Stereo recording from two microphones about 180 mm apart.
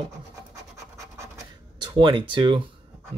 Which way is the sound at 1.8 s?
25° right (ahead or behind).